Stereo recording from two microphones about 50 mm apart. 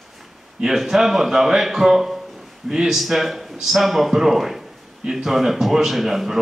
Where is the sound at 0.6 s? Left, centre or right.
Centre.